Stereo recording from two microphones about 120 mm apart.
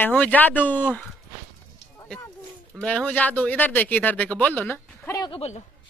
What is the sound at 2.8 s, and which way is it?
Speech, 10° left (ahead or behind).